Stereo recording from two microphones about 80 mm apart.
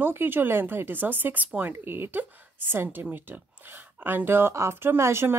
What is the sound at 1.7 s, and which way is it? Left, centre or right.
A woman's voice, right.